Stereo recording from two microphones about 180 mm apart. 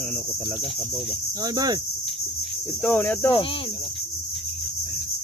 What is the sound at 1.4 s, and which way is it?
Speech, 20° right (ahead or behind).